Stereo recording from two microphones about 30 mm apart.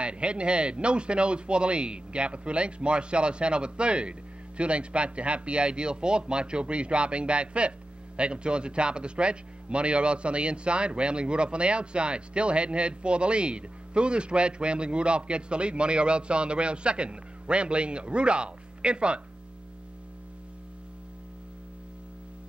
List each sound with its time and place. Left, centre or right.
0.0 s a man's voice: right